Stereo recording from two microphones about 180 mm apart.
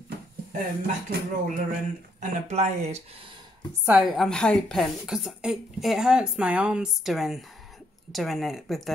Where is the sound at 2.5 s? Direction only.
35° right (ahead or behind).